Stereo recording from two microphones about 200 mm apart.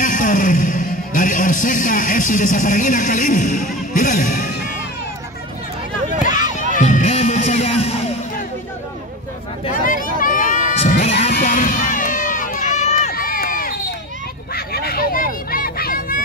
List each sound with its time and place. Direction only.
0.0 s speech: 40° left (ahead or behind)
6.7 s music: 40° left (ahead or behind)
9.8 s a sound: 45° left (ahead or behind)
11.3 s run: 40° left (ahead or behind)
14.5 s vehicle: 50° left (ahead or behind)